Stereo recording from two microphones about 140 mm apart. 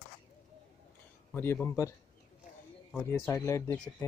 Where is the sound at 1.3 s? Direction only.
15° left (ahead or behind).